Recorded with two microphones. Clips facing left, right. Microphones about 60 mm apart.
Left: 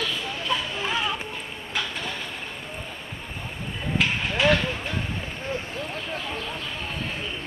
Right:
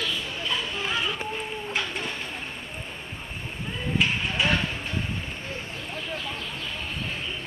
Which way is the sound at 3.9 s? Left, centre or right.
Left.